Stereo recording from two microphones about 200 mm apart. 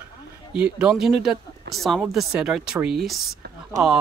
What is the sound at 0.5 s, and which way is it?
Speech, 5° right (ahead or behind).